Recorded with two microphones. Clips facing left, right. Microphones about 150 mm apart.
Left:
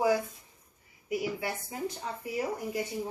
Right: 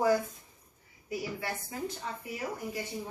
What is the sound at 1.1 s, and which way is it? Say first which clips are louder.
Speech: left 3 dB; 20° left (ahead or behind).